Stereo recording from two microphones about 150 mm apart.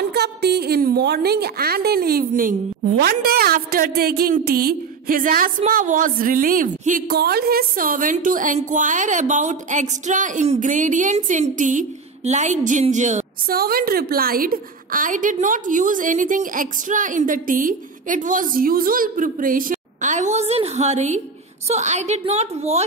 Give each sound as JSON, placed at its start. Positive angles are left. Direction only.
{"t": 0.0, "sound": "a woman's voice", "side_deg": -90}
{"t": 3.0, "sound": "a woman's voice", "side_deg": -90}
{"t": 13.5, "sound": "a woman's voice", "side_deg": -80}